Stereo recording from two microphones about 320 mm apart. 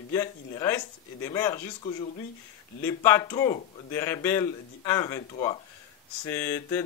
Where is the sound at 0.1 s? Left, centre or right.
Centre.